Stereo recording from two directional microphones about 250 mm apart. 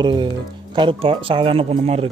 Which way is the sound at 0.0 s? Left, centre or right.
Centre.